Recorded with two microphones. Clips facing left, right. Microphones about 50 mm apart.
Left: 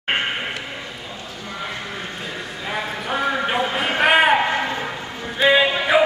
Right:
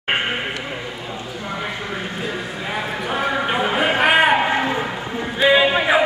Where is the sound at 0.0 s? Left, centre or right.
Centre.